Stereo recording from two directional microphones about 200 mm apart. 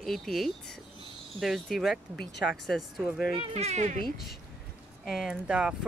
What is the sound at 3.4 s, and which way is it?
Speech, 30° right (ahead or behind).